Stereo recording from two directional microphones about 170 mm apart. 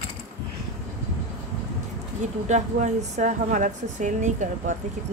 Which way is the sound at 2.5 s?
45° right (ahead or behind).